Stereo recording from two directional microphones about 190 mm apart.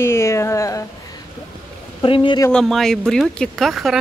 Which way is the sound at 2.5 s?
Centre (ahead or behind).